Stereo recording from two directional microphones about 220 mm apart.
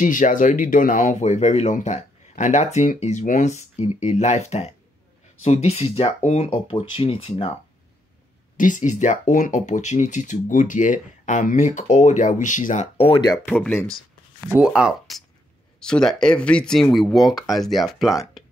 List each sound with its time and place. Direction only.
0.0 s speech: 35° left (ahead or behind)
8.5 s speech: 35° left (ahead or behind)
13.5 s speech: 10° left (ahead or behind)
14.5 s speech: 5° right (ahead or behind)